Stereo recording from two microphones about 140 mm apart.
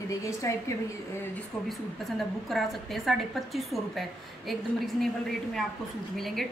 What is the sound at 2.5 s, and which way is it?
A woman's voice, centre (ahead or behind).